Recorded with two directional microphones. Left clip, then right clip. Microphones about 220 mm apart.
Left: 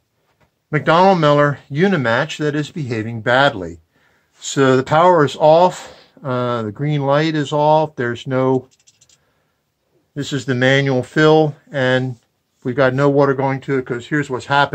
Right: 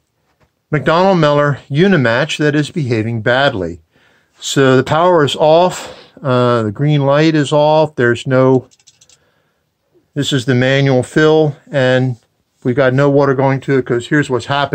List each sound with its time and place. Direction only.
0.7 s speech: 30° right (ahead or behind)
10.1 s speech: 30° right (ahead or behind)